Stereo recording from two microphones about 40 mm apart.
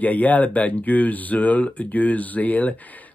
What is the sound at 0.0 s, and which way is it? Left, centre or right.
Speech, left.